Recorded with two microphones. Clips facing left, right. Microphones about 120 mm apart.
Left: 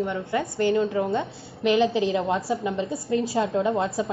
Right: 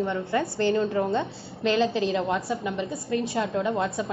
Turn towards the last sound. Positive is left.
turn(degrees=25)  # may be behind; listen again after turning